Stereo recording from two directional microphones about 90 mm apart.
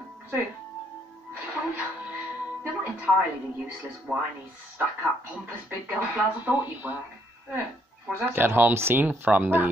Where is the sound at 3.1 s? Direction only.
15° right (ahead or behind).